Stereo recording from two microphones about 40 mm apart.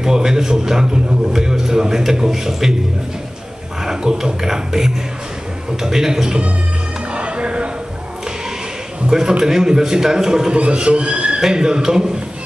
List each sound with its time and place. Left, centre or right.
0.0 s a man's voice: centre
3.8 s a man's voice: centre
7.2 s music: right
9.0 s a sound: centre
9.4 s a man's voice: centre
10.5 s a man's voice: right